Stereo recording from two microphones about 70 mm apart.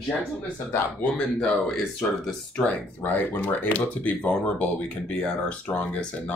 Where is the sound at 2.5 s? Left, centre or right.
Centre.